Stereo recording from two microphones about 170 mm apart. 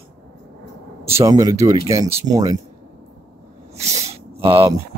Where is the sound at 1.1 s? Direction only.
20° right (ahead or behind).